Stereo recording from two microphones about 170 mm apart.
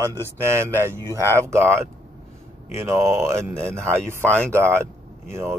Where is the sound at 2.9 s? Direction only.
15° right (ahead or behind).